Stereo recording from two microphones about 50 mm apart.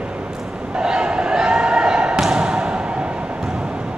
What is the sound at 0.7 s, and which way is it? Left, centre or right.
Slam, centre.